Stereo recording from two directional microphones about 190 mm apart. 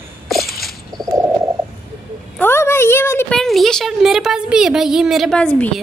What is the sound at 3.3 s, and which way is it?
Speech, centre (ahead or behind).